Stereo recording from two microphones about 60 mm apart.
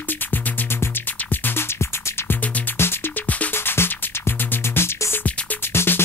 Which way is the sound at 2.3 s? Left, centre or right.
Left.